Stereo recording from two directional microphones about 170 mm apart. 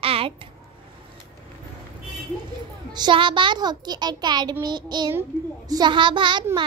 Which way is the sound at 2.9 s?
25° right (ahead or behind).